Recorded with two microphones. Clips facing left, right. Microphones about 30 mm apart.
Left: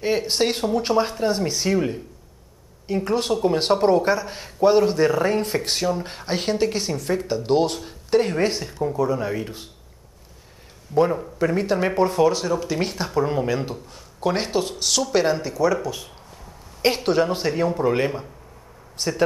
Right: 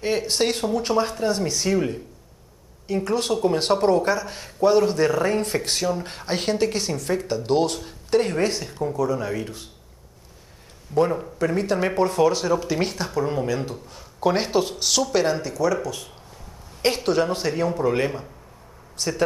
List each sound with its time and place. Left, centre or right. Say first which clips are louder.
0.2 s speech: left 1 dB; centre
3.1 s speech: left 1 dB; centre
11.0 s speech: left 1 dB; centre
12.9 s speech: left 2 dB; centre
13.8 s speech: right 6 dB; centre
19.0 s speech: left 1 dB; centre